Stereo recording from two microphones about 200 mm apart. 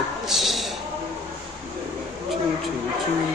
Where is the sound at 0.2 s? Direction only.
Centre (ahead or behind).